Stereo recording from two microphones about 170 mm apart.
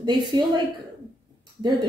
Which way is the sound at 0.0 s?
25° right (ahead or behind).